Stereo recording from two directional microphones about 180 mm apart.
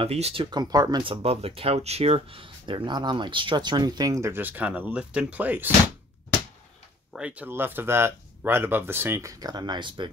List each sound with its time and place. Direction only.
0.0 s speech: 35° right (ahead or behind); by 5.7 s 10° right (ahead or behind)
7.2 s speech: 5° right (ahead or behind); by 10.1 s 25° right (ahead or behind)